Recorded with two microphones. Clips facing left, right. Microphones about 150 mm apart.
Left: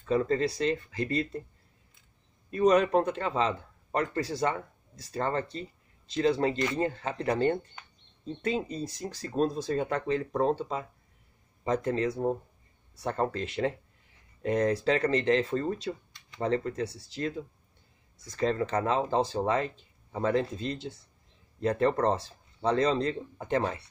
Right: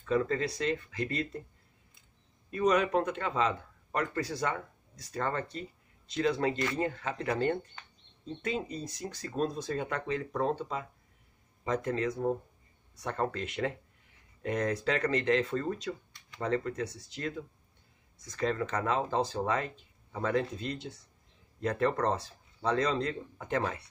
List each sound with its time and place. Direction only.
0.0 s speech: 30° left (ahead or behind)
2.5 s speech: 35° left (ahead or behind)
18.3 s speech: 30° left (ahead or behind)